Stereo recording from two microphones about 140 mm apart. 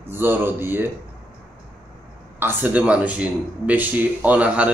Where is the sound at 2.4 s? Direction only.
10° right (ahead or behind).